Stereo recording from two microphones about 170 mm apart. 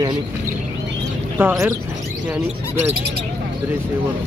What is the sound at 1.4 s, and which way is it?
Speech, 15° right (ahead or behind).